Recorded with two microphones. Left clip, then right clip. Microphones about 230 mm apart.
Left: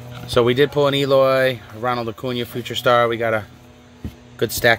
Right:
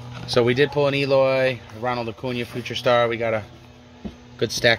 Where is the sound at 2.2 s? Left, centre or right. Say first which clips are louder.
Left 3 dB; centre.